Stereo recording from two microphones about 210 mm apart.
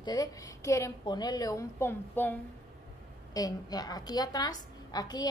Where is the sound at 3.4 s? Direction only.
20° left (ahead or behind).